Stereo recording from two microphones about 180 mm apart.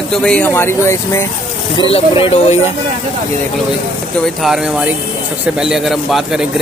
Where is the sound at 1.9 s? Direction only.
30° left (ahead or behind).